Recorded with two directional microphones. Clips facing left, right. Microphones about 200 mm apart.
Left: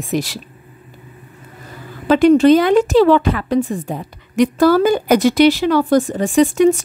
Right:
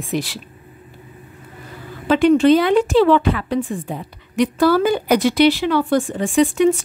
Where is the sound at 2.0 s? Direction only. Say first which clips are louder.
Left 3 dB; 40° left (ahead or behind).